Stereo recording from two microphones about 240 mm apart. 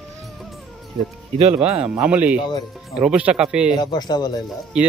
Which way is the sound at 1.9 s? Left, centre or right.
Centre.